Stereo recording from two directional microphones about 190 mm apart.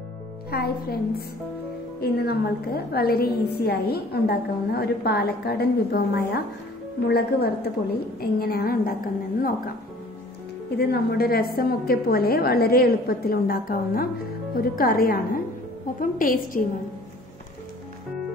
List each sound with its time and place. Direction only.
0.5 s a woman's voice: 55° left (ahead or behind)
10.8 s a woman's voice: 55° left (ahead or behind)